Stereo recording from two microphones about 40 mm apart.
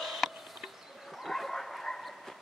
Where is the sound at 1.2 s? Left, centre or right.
Centre.